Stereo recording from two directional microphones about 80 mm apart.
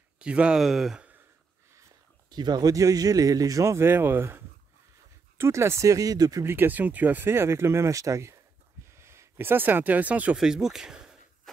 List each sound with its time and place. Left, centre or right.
0.2 s speech: centre
2.2 s speech: right
5.4 s speech: right
6.4 s speech: right
10.3 s speech: centre